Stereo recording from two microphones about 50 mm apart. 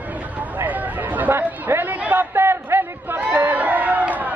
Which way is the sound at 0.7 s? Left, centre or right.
Right.